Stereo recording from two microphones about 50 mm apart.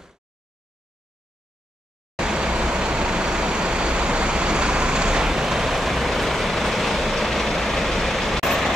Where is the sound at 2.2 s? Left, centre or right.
Centre.